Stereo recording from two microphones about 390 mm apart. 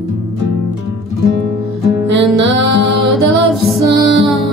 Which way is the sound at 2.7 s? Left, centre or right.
Right.